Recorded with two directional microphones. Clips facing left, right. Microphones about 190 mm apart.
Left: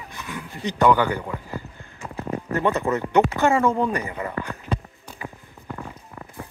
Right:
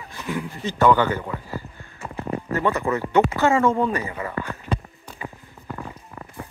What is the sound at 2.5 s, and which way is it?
A man's voice, 20° left (ahead or behind).